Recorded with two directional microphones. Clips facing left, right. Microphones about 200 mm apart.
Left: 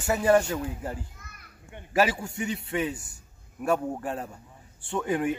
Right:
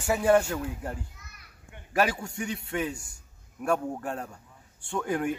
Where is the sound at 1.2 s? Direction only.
50° left (ahead or behind).